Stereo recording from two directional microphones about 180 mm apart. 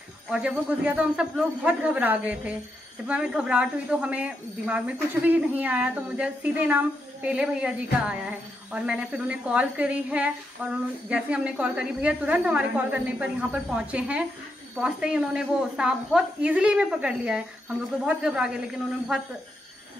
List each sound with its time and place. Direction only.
0.3 s a woman's voice: 5° right (ahead or behind)